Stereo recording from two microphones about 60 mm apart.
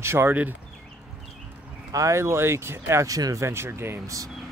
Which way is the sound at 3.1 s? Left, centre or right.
Right.